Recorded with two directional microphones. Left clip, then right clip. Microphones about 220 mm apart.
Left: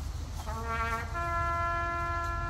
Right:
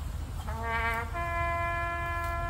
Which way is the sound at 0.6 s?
Centre (ahead or behind).